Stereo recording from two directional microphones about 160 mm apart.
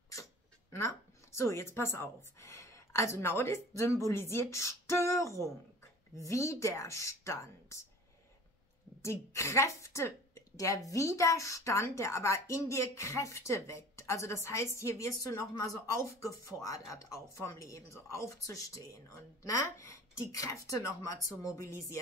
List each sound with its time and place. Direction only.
0.7 s a woman's voice: 20° left (ahead or behind)
9.0 s a woman's voice: 20° left (ahead or behind)